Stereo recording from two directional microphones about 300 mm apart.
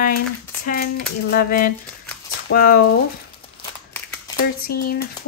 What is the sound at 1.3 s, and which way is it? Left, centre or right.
A woman's voice, left.